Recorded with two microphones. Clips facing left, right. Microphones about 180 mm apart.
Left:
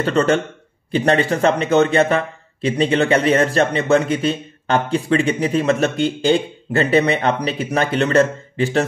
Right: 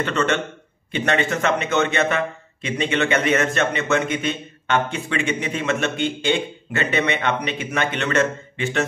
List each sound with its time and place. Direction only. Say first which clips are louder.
0.0 s a man's voice: left 5 dB; 35° left (ahead or behind)